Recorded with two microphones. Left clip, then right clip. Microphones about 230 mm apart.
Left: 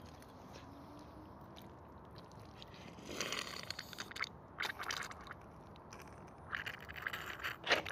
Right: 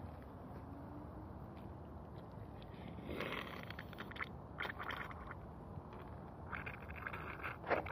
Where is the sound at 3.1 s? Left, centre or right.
Centre.